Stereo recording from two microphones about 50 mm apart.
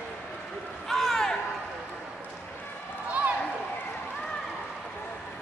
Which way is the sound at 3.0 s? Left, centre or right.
Right.